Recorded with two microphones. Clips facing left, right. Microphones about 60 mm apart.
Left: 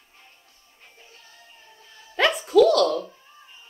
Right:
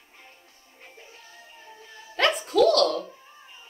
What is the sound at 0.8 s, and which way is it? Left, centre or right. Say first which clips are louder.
Music: right 3 dB; right.